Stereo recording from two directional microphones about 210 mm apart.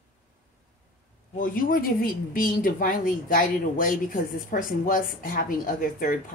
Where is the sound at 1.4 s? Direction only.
40° left (ahead or behind).